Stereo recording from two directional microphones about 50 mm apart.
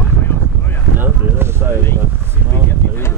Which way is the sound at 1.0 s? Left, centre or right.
Right.